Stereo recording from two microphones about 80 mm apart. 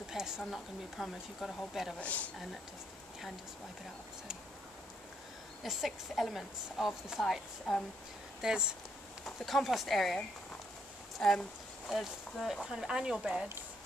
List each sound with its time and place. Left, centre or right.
0.1 s a woman's voice: centre
2.0 s speech: centre
5.6 s a woman's voice: centre
8.4 s a woman's voice: centre